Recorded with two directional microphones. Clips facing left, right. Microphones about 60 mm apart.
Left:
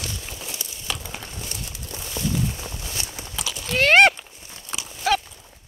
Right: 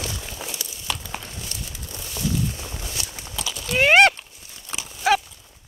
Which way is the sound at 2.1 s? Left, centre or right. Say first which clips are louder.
Even; centre.